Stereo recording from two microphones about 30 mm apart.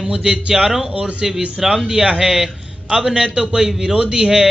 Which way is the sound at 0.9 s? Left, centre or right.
Right.